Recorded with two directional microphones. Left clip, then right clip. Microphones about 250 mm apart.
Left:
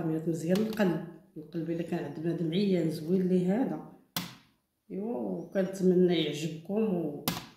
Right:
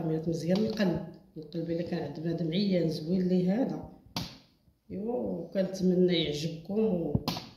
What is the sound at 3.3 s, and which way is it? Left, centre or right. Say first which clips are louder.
Speech: right 1 dB; right.